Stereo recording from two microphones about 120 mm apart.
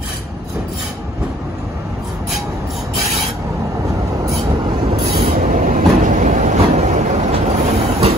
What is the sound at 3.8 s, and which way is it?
Train, 30° right (ahead or behind).